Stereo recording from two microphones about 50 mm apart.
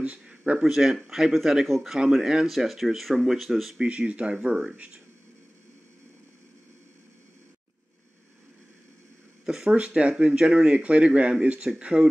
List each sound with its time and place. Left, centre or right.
0.0 s a sound: right
0.3 s speech: centre
2.4 s speech: centre
3.8 s speech: right
4.7 s speech: right
9.5 s speech: centre
9.8 s speech: right